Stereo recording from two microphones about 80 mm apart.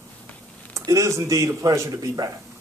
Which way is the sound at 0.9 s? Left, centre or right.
Right.